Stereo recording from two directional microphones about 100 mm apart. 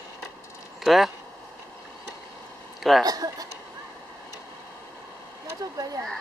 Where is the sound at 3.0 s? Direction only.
40° right (ahead or behind).